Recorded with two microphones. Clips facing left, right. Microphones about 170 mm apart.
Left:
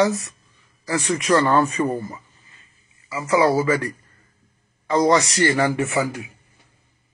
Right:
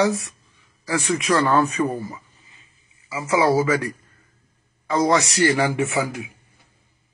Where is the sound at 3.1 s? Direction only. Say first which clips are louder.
Left 1 dB; 15° right (ahead or behind).